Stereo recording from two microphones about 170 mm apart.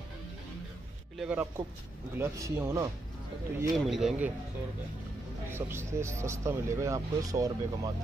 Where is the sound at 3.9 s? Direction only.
Centre (ahead or behind).